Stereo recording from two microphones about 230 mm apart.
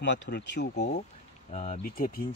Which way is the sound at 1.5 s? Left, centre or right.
Left.